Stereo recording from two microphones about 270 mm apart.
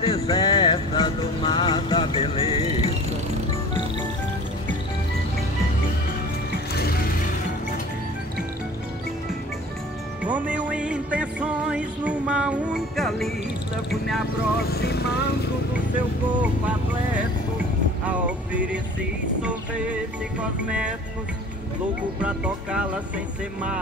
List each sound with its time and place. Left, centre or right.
0.0 s music: centre
6.7 s music: left
10.2 s music: centre
13.8 s vehicle: centre
14.7 s vehicle: left
18.0 s music: centre
22.2 s speech: centre